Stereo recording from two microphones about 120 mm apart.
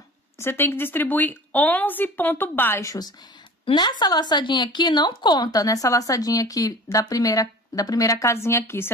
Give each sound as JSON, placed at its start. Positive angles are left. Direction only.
{"t": 0.4, "sound": "a woman's voice", "side_deg": 20}